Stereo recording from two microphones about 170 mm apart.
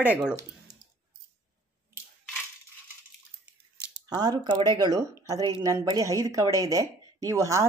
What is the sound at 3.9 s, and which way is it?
Speech, 25° right (ahead or behind).